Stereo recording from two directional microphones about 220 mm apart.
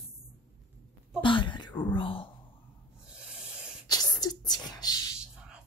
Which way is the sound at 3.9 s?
15° left (ahead or behind).